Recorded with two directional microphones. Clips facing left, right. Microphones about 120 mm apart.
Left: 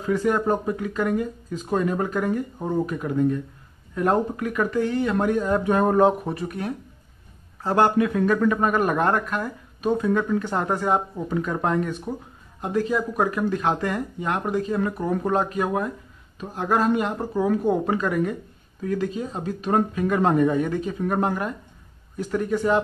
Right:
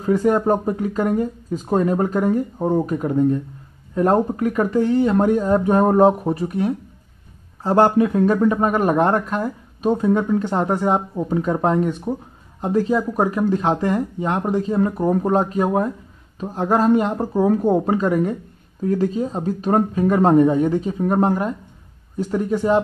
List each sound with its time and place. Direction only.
0.0 s speech: 40° right (ahead or behind)
7.6 s speech: 30° right (ahead or behind)